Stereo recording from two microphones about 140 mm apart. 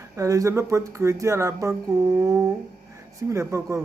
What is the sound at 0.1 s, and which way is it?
Speech, 25° right (ahead or behind).